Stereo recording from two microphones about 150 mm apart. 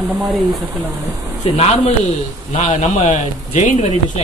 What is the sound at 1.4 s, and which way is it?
Speech, 45° left (ahead or behind).